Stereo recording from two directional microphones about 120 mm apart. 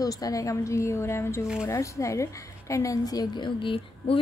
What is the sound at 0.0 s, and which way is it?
A woman's voice, 30° left (ahead or behind).